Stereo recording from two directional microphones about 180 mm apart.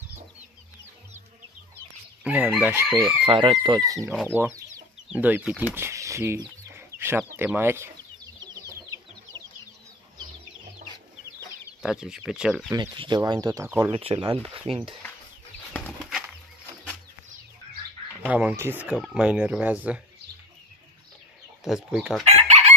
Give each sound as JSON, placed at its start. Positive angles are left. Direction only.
{"t": 2.2, "sound": "speech", "side_deg": -10}
{"t": 3.3, "sound": "speech", "side_deg": -30}
{"t": 8.5, "sound": "chicken", "side_deg": -20}
{"t": 11.8, "sound": "speech", "side_deg": -5}
{"t": 12.7, "sound": "speech", "side_deg": -25}
{"t": 13.7, "sound": "speech", "side_deg": -10}
{"t": 13.9, "sound": "speech", "side_deg": -30}
{"t": 18.2, "sound": "speech", "side_deg": -10}
{"t": 21.6, "sound": "speech", "side_deg": -5}
{"t": 22.2, "sound": "chicken", "side_deg": -35}